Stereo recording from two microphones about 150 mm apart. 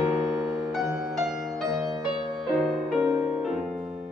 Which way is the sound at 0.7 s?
5° right (ahead or behind).